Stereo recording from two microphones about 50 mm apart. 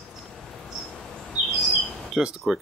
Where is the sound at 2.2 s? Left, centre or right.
Centre.